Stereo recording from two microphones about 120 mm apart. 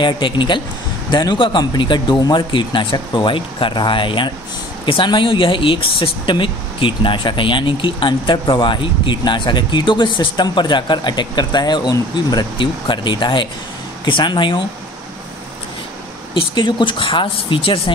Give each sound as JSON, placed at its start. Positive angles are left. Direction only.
{"t": 0.0, "sound": "speech", "side_deg": 40}
{"t": 16.3, "sound": "speech", "side_deg": 40}